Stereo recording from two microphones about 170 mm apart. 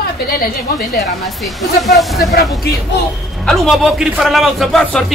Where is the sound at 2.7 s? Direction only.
70° left (ahead or behind).